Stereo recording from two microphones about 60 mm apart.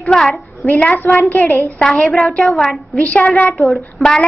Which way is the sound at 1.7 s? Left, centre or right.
Centre.